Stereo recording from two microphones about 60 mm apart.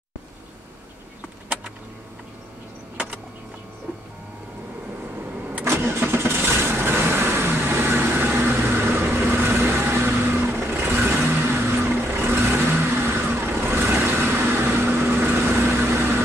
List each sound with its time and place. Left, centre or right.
5.5 s vehicle: right